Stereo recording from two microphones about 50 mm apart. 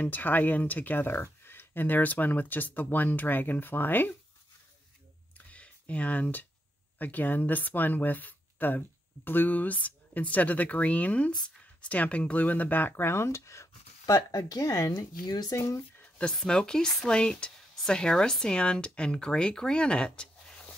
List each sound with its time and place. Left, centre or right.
0.0 s speech: left
1.4 s speech: left
5.5 s a sound: left
7.0 s speech: left
14.1 s speech: left
16.0 s a sound: left
16.3 s speech: centre